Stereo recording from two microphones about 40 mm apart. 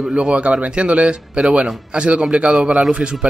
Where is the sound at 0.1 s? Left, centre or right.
Right.